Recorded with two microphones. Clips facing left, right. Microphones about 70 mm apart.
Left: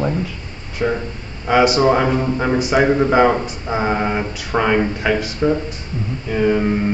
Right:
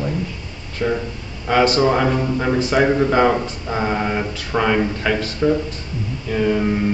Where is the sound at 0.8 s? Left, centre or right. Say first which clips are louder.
Left 1 dB; left.